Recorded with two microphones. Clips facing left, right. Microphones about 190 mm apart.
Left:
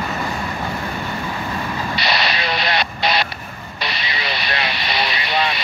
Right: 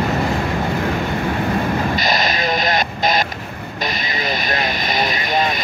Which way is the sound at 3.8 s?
45° right (ahead or behind).